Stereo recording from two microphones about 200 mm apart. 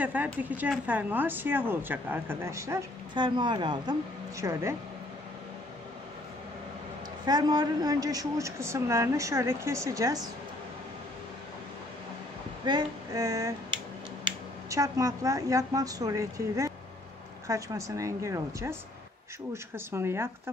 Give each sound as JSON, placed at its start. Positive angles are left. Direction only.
{"t": 0.0, "sound": "speech", "side_deg": -10}
{"t": 7.2, "sound": "speech", "side_deg": -20}
{"t": 12.6, "sound": "a woman's voice", "side_deg": -20}